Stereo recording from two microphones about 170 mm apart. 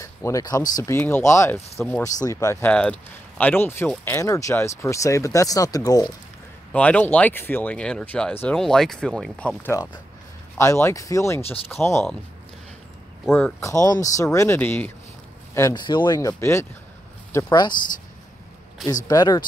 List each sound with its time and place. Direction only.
0.0 s speech: 20° left (ahead or behind)
2.1 s speech: 20° left (ahead or behind)
6.7 s speech: 10° left (ahead or behind)
9.6 s speech: 15° left (ahead or behind)
13.3 s speech: 15° left (ahead or behind)
19.0 s speech: 20° left (ahead or behind)